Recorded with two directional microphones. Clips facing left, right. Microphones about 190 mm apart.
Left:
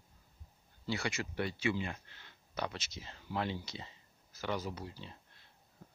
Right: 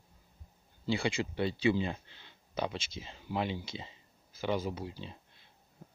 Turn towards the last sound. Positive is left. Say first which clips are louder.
# right 5 dB
turn(degrees=-20)  # may be behind; listen again after turning